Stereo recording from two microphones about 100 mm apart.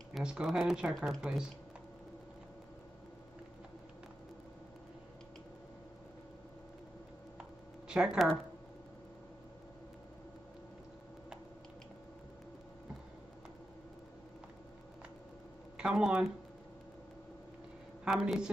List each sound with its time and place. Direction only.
0.1 s speech: 10° right (ahead or behind)
7.9 s speech: 10° right (ahead or behind)
15.8 s speech: 5° right (ahead or behind)
18.0 s a woman's voice: 5° right (ahead or behind)